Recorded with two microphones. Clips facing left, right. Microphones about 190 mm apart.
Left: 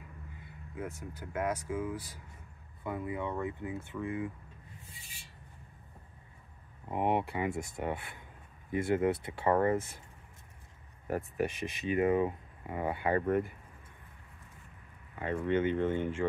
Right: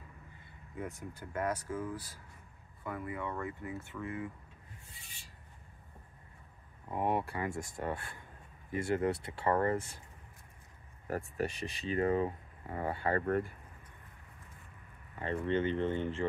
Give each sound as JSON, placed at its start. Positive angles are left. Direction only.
{"t": 0.7, "sound": "speech", "side_deg": 0}
{"t": 6.9, "sound": "speech", "side_deg": 20}
{"t": 11.3, "sound": "speech", "side_deg": 15}
{"t": 15.1, "sound": "speech", "side_deg": 10}